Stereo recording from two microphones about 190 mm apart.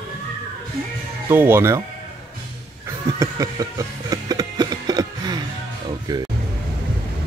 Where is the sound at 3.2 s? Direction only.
15° right (ahead or behind).